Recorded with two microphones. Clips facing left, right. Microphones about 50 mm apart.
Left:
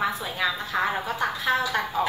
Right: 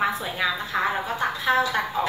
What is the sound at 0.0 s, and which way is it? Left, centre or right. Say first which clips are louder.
A woman's voice: right 2 dB; centre.